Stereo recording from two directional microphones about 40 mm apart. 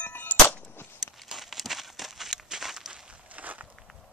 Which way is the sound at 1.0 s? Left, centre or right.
Centre.